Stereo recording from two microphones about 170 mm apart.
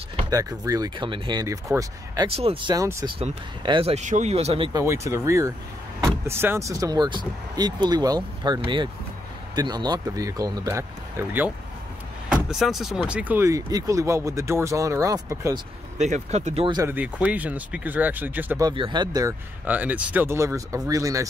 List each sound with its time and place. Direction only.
0.3 s speech: 20° right (ahead or behind)
2.2 s speech: 35° right (ahead or behind); by 3.1 s 20° right (ahead or behind)
3.6 s speech: 30° right (ahead or behind)
4.7 s speech: 15° right (ahead or behind)
9.6 s speech: 25° right (ahead or behind)
12.3 s speech: centre (ahead or behind); by 15.6 s 20° right (ahead or behind)
16.0 s speech: 40° right (ahead or behind)
16.8 s speech: 10° right (ahead or behind)
18.6 s speech: 25° right (ahead or behind)
19.6 s speech: 10° right (ahead or behind)